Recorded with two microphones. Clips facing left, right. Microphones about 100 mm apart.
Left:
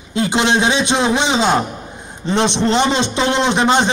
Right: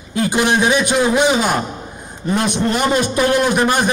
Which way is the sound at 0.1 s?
20° left (ahead or behind).